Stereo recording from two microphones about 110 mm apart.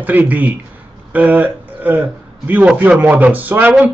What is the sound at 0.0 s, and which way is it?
A man's voice, 15° right (ahead or behind).